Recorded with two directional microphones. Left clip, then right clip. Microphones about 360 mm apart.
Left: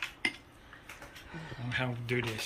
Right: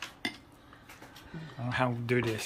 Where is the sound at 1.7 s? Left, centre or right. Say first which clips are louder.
Right 4 dB; centre.